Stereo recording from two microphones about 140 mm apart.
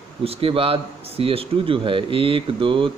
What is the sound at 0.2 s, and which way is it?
Speech, 40° right (ahead or behind).